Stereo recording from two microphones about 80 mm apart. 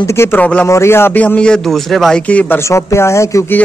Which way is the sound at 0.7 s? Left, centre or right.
Left.